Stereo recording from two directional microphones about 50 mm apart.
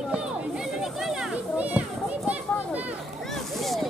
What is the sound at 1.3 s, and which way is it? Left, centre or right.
Music, right.